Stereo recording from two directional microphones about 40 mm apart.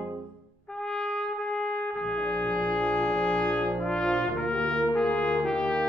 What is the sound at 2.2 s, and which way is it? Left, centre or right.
Brass instrument, left.